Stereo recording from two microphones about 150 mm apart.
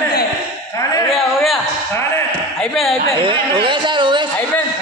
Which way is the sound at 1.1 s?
Centre (ahead or behind).